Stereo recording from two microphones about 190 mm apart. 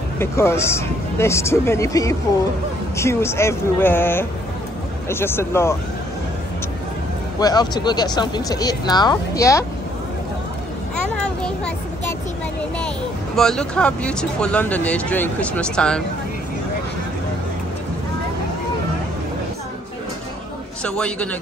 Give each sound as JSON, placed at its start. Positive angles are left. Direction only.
{"t": 0.2, "sound": "speech", "side_deg": 15}
{"t": 7.3, "sound": "speech", "side_deg": 20}
{"t": 11.0, "sound": "a sound", "side_deg": 5}
{"t": 13.4, "sound": "speech", "side_deg": 5}
{"t": 20.8, "sound": "speech", "side_deg": 5}